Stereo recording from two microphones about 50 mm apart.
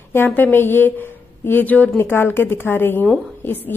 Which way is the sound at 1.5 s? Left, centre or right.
Left.